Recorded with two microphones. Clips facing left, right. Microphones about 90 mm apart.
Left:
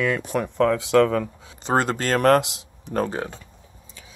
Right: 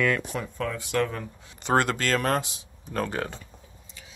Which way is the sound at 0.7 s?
90° left.